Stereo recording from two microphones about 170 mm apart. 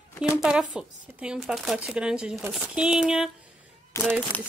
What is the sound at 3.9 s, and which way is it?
Speech, 15° left (ahead or behind).